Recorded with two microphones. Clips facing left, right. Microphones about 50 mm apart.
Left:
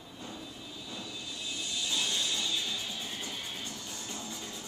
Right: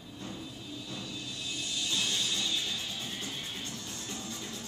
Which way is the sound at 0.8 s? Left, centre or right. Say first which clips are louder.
Left 1 dB; centre.